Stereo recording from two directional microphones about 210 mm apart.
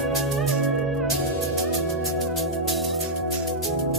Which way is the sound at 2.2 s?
Centre (ahead or behind).